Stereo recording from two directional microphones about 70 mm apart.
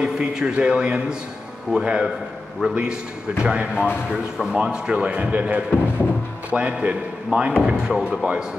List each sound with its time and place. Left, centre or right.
0.0 s speech: centre